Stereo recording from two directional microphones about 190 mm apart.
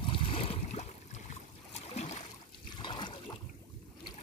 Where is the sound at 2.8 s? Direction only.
25° left (ahead or behind).